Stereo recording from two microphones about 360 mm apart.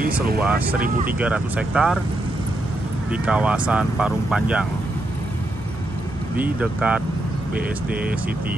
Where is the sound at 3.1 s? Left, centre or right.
Centre.